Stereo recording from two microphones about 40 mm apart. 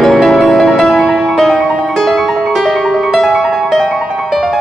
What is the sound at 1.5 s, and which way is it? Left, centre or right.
Music, right.